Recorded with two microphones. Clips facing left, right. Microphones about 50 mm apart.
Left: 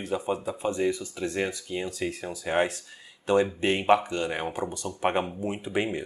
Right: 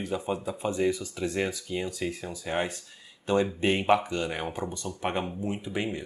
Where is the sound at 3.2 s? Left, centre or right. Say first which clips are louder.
Left 2 dB; centre.